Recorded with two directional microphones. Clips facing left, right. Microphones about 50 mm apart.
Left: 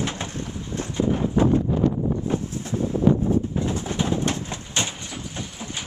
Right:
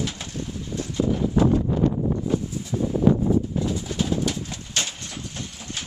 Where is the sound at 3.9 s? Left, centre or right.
Left.